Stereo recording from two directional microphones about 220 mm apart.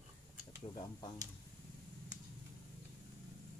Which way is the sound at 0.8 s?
20° left (ahead or behind).